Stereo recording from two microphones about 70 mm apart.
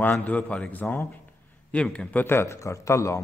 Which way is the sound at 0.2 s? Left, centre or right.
Left.